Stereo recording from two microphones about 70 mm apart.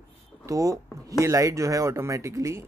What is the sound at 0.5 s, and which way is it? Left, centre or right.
Speech, right.